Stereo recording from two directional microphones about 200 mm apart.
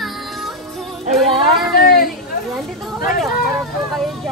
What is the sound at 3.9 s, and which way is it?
Speech, centre (ahead or behind).